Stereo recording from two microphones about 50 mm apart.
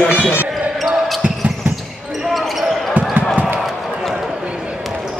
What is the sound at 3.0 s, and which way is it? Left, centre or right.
Basketball bounce, right.